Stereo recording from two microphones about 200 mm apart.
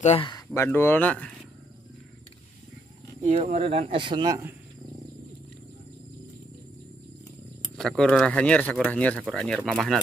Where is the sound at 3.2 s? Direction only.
30° right (ahead or behind); by 4.5 s 15° right (ahead or behind).